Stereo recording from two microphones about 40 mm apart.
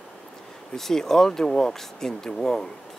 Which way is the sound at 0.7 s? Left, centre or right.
Centre.